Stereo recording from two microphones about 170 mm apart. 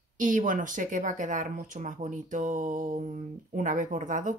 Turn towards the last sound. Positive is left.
turn(degrees=-50)  # may be behind; listen again after turning